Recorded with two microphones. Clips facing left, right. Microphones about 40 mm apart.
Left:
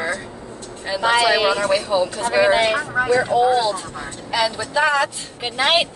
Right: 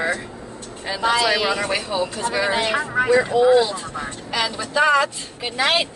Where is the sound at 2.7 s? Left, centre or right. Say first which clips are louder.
Right 1 dB; centre.